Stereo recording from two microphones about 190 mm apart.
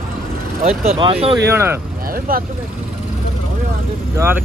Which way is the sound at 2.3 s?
50° right (ahead or behind).